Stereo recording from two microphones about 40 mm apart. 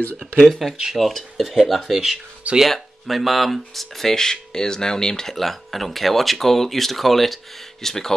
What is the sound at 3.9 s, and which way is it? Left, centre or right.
Speech, centre.